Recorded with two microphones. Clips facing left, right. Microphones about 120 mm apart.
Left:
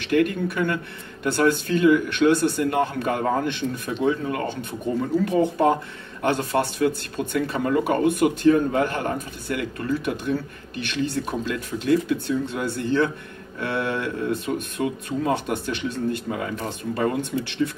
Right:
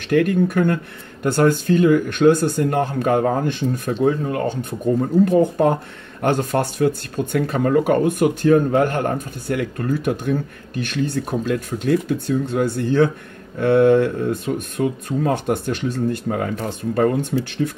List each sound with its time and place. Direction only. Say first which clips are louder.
0.1 s speech: right 4 dB; 45° right (ahead or behind)